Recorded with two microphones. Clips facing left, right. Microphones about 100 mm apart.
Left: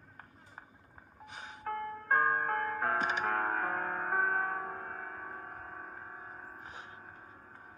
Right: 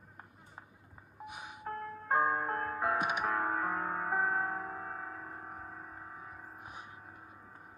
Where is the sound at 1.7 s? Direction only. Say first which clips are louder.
Left 2 dB; 50° left (ahead or behind).